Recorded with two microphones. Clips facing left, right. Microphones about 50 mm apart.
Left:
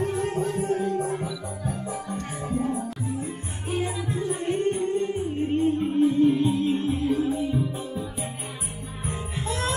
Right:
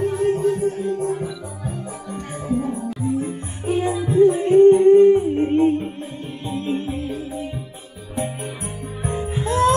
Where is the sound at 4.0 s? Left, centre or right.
Right.